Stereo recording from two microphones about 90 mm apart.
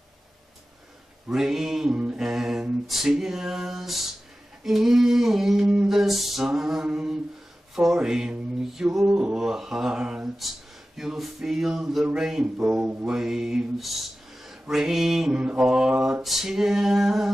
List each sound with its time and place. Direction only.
1.3 s mantra: 5° right (ahead or behind)